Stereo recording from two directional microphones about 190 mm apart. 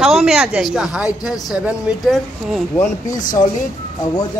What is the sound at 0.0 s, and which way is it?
A woman's voice, 5° right (ahead or behind).